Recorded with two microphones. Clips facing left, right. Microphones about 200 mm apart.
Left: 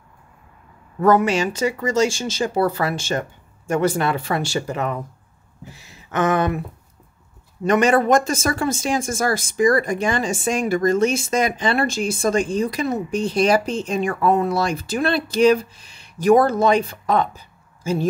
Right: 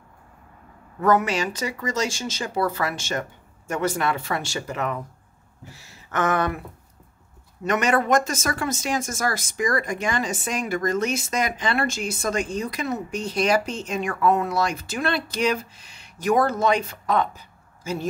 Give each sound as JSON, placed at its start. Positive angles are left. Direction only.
{"t": 1.0, "sound": "speech", "side_deg": 30}
{"t": 5.7, "sound": "a sound", "side_deg": 20}
{"t": 7.6, "sound": "speech", "side_deg": 30}